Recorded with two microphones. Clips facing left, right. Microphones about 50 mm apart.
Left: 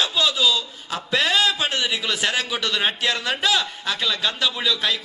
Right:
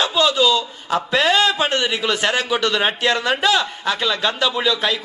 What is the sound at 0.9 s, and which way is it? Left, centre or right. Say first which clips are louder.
A man's voice: right 4 dB; centre.